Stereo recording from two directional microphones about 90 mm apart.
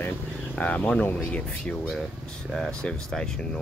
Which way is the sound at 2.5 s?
5° left (ahead or behind).